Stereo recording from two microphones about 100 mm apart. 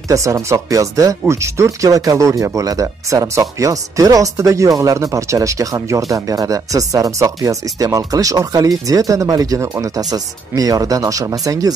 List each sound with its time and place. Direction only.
0.1 s speech: 30° right (ahead or behind)